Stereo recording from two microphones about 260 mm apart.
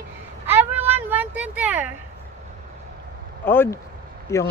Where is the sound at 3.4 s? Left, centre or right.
Centre.